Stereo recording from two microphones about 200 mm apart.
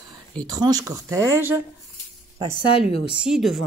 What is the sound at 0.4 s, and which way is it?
Speech, 20° right (ahead or behind).